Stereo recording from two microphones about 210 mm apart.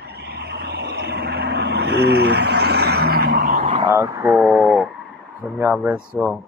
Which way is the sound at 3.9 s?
15° right (ahead or behind).